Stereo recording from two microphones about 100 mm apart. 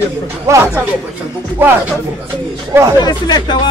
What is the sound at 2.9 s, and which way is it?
Speech, 45° left (ahead or behind).